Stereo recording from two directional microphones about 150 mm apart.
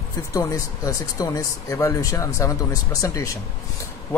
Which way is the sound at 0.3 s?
20° left (ahead or behind).